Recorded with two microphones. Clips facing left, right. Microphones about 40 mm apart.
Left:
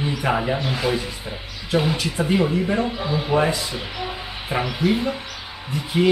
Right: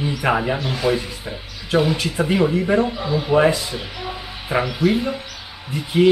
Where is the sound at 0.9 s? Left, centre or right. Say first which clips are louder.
Right 2 dB; centre.